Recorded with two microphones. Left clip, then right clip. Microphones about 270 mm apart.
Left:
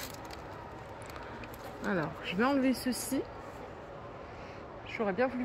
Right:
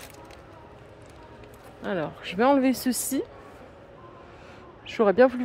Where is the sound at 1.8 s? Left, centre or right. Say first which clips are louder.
Right 5 dB; centre.